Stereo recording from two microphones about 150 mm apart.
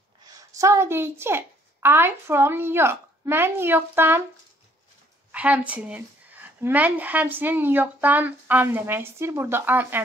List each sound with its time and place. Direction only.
0.3 s a child's voice: 20° right (ahead or behind)
5.3 s a woman's voice: 10° right (ahead or behind)